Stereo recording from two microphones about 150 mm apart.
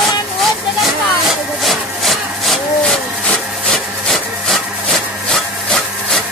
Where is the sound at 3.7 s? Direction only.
Centre (ahead or behind).